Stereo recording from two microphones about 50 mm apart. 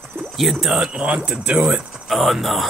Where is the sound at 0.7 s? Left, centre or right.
Centre.